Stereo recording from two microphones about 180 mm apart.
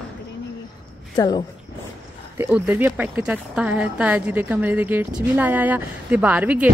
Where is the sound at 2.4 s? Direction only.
10° right (ahead or behind).